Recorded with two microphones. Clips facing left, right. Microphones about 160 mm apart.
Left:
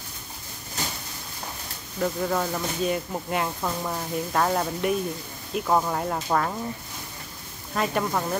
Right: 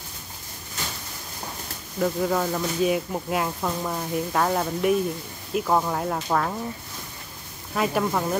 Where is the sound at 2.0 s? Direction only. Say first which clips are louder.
Right 2 dB; 5° right (ahead or behind).